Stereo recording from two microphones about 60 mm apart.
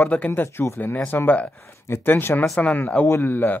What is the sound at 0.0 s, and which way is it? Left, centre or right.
Speech, left.